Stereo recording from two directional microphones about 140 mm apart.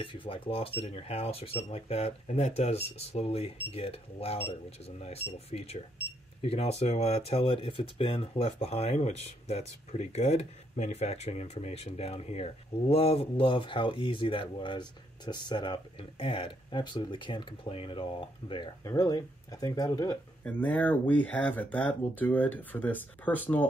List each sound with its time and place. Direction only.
0.0 s speech: 35° left (ahead or behind)
18.9 s speech: 25° left (ahead or behind)
20.4 s speech: 10° left (ahead or behind)